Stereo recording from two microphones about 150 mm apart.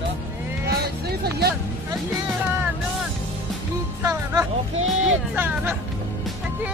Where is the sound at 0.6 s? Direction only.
90° right.